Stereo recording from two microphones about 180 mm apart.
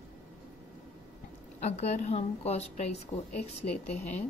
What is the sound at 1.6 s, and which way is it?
A woman's voice, 35° left (ahead or behind).